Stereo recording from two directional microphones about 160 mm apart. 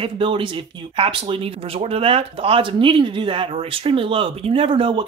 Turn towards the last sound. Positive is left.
turn(degrees=-30)  # may be behind; listen again after turning